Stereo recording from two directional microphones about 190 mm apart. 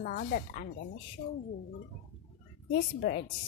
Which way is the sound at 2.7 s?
60° left (ahead or behind).